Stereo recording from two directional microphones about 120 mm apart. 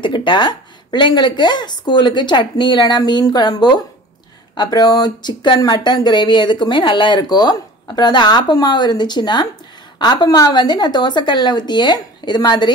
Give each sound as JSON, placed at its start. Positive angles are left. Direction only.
{"t": 0.0, "sound": "speech", "side_deg": 40}